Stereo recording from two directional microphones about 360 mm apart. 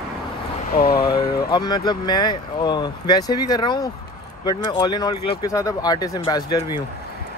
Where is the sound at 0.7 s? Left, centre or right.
Left.